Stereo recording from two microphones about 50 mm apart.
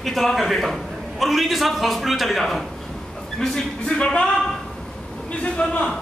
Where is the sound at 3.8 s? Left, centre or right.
Left.